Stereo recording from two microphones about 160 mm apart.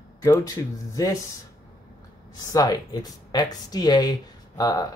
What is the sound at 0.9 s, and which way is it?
Speech, 20° left (ahead or behind).